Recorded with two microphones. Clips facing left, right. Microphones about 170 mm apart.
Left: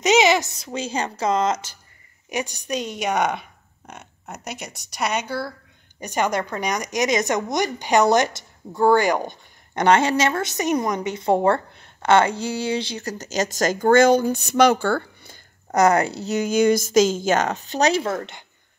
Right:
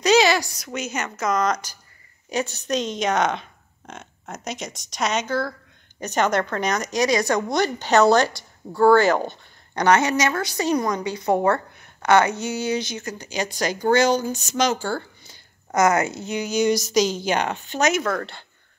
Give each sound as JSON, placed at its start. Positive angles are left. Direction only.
{"t": 0.0, "sound": "a woman's voice", "side_deg": 20}
{"t": 9.8, "sound": "a woman's voice", "side_deg": 30}
{"t": 15.7, "sound": "speech", "side_deg": 35}